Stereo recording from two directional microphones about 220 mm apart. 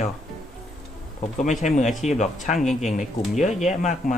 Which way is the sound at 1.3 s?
35° left (ahead or behind).